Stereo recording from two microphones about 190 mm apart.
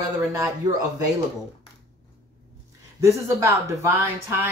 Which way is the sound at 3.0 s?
15° right (ahead or behind).